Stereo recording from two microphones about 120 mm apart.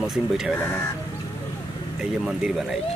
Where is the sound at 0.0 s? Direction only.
5° right (ahead or behind).